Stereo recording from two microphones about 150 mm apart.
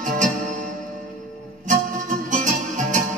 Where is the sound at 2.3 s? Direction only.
60° right (ahead or behind).